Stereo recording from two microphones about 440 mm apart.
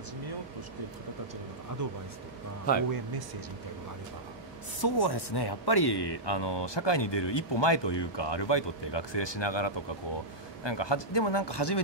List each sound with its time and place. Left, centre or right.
1.8 s speech: right
2.9 s speech: right
4.7 s speech: left